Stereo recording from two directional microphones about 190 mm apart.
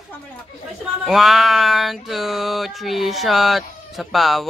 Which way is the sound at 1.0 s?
Centre (ahead or behind).